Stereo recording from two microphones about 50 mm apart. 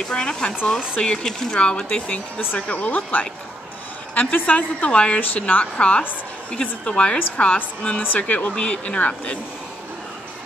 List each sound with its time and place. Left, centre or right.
0.1 s a woman's voice: centre
4.1 s a woman's voice: left